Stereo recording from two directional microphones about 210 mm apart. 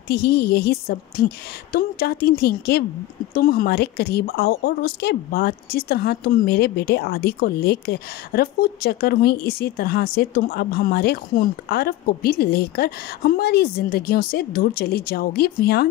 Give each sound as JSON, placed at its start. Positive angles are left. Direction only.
{"t": 0.1, "sound": "a woman's voice", "side_deg": 50}